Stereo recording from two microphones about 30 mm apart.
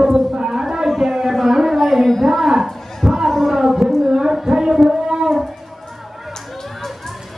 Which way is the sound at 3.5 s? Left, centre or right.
Centre.